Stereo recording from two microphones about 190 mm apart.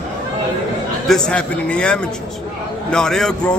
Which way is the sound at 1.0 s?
5° left (ahead or behind).